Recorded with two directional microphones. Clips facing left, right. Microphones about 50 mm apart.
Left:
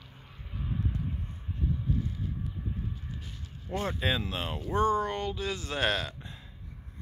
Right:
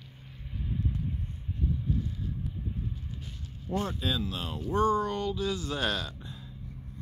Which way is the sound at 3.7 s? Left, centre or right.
Left.